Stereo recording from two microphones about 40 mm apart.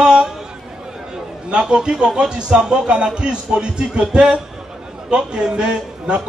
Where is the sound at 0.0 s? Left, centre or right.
Centre.